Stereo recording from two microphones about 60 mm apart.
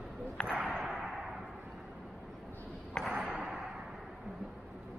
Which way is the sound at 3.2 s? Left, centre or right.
Centre.